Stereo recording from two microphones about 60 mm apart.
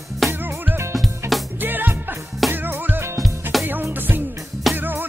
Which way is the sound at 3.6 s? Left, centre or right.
Right.